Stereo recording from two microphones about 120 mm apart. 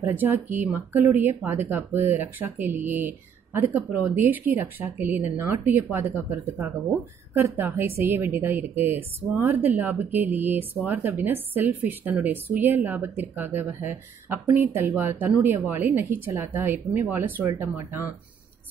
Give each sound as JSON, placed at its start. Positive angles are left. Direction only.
{"t": 0.0, "sound": "a woman's voice", "side_deg": -15}